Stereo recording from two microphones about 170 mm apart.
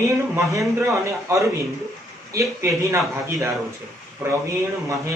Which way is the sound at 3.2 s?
15° right (ahead or behind).